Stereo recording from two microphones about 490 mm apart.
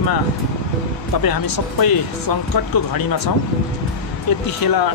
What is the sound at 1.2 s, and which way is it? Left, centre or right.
Speech, left.